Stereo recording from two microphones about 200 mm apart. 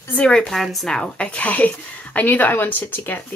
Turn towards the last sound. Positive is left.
turn(degrees=10)  # may be behind; listen again after turning